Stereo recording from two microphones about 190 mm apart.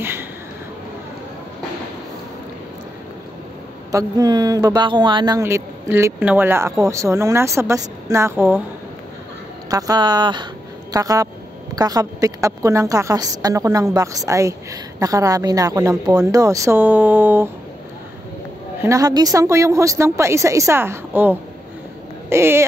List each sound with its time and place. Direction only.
3.9 s speech: 20° right (ahead or behind)
9.7 s a woman's voice: 20° right (ahead or behind)
18.8 s speech: 15° right (ahead or behind)